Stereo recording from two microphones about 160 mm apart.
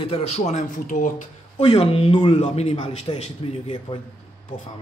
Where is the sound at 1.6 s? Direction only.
35° left (ahead or behind).